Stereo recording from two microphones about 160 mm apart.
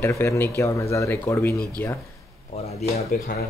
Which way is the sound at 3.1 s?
70° left (ahead or behind).